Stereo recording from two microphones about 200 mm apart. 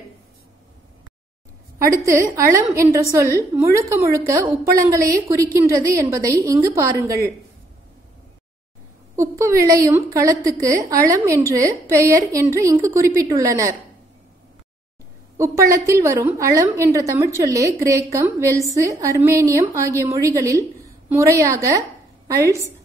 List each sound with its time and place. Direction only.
2.0 s a woman's voice: 15° right (ahead or behind)
9.1 s a woman's voice: 15° right (ahead or behind)
15.3 s a woman's voice: 15° right (ahead or behind)